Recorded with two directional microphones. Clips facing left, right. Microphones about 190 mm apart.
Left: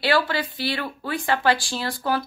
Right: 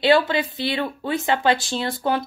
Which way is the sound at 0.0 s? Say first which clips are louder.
Right 5 dB; 20° right (ahead or behind).